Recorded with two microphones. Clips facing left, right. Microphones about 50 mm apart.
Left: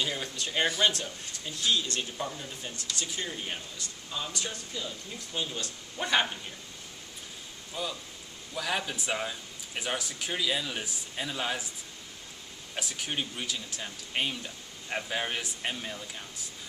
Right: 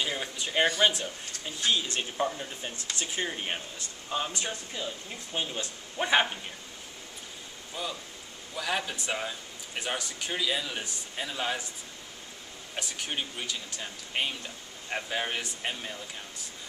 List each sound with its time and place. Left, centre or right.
0.0 s speech: centre
2.0 s speech: right
7.7 s speech: centre
12.7 s speech: centre